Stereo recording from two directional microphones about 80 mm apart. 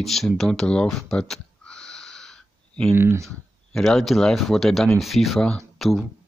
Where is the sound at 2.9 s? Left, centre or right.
Right.